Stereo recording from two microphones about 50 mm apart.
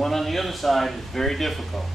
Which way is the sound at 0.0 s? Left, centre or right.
Centre.